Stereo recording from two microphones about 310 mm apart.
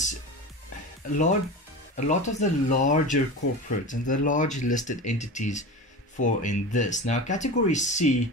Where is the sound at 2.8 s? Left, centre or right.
Left.